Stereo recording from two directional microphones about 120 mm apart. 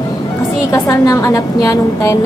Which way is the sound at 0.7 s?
25° left (ahead or behind).